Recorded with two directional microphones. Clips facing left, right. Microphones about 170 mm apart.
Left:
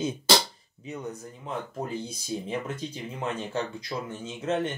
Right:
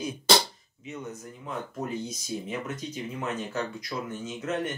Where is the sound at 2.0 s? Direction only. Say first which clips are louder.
Left 1 dB; 30° left (ahead or behind).